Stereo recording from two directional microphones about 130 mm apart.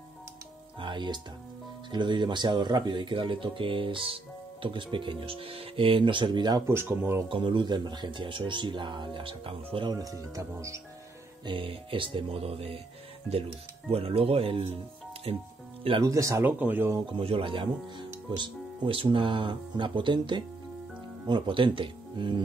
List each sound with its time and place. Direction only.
0.7 s music: 40° right (ahead or behind)
1.9 s speech: 35° right (ahead or behind)
6.7 s speech: 15° right (ahead or behind)
7.2 s speech: 40° right (ahead or behind)
10.3 s speech: 25° right (ahead or behind)
11.4 s speech: 40° right (ahead or behind)
13.8 s speech: 50° right (ahead or behind)
16.0 s speech: 25° right (ahead or behind)
16.4 s speech: 15° right (ahead or behind)
17.0 s speech: 45° right (ahead or behind)